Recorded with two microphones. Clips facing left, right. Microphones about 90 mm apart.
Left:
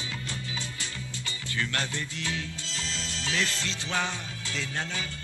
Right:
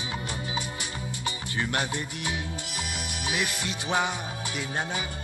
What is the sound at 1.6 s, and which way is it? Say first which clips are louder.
Music: right 3 dB; 15° right (ahead or behind).